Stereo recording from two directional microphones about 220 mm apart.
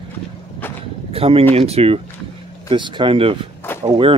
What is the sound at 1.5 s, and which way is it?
Speech, 30° right (ahead or behind).